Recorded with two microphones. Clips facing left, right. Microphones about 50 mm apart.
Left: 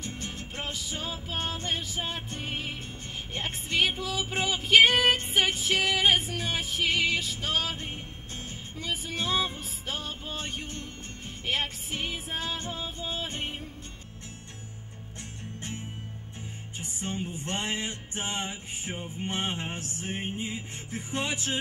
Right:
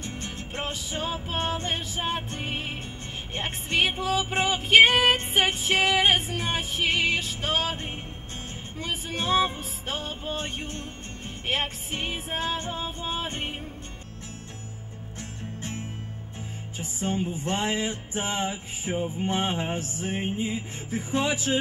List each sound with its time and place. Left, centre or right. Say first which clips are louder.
0.0 s music: right 2 dB; right
17.0 s music: right 6 dB; right